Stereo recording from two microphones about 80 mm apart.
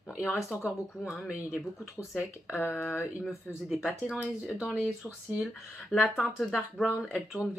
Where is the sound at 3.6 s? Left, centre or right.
Centre.